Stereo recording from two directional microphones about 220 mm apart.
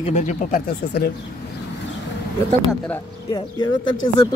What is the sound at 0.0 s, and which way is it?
Speech, 35° left (ahead or behind).